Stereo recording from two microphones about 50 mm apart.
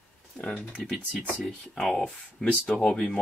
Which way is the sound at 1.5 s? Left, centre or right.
Centre.